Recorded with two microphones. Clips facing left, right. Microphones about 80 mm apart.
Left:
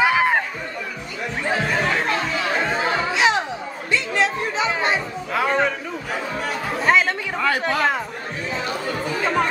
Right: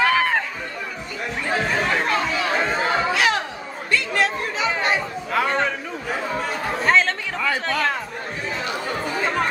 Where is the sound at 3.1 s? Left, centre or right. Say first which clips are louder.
Left 2 dB; left.